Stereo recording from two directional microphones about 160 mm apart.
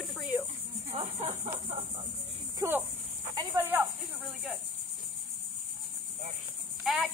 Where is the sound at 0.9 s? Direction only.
40° right (ahead or behind).